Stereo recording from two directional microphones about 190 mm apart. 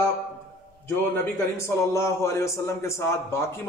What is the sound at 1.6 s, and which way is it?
A man's voice, 15° left (ahead or behind).